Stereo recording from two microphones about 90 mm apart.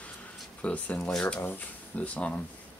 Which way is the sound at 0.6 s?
15° left (ahead or behind).